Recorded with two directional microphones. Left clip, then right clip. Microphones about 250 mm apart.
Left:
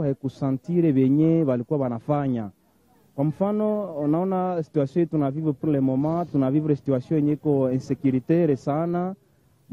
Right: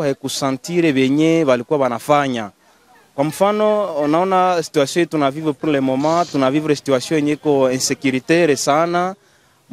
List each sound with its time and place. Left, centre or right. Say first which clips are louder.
0.4 s speech: right 6 dB; centre